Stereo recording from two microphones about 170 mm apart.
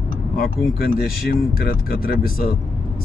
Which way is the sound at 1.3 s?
60° left (ahead or behind).